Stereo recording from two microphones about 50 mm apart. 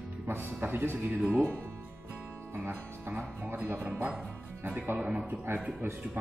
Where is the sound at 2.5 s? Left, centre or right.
Right.